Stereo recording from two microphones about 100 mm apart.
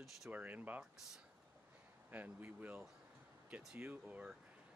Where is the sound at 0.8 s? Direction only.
5° right (ahead or behind).